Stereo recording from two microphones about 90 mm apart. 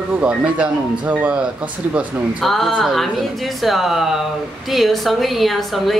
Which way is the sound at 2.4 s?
Centre (ahead or behind).